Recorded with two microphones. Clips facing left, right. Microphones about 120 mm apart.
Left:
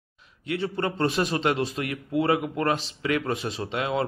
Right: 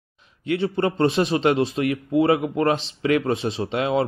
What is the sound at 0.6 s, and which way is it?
Speech, 25° right (ahead or behind).